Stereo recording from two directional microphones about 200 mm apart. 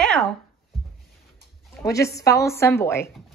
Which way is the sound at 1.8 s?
15° left (ahead or behind).